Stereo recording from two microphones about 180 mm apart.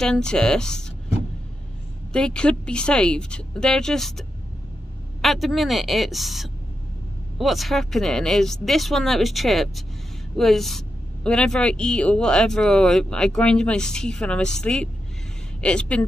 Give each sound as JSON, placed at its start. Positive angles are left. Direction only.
{"t": 0.0, "sound": "speech", "side_deg": 5}
{"t": 2.1, "sound": "speech", "side_deg": 5}